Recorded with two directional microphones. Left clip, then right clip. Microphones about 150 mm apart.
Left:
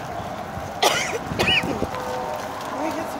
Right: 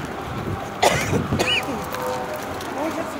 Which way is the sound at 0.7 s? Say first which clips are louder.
Right 1 dB; 15° right (ahead or behind).